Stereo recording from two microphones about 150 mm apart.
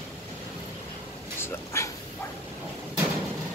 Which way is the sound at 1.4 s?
15° left (ahead or behind).